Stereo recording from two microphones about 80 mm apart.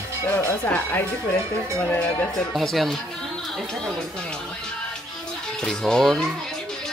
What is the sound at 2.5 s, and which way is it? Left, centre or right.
Speech, centre.